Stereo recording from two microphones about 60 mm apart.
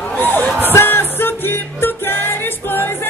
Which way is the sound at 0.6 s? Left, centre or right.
Left.